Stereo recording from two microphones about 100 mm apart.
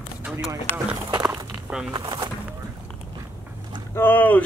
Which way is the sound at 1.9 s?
40° right (ahead or behind).